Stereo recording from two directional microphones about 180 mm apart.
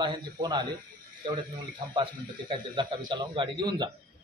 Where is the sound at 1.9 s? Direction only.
25° right (ahead or behind).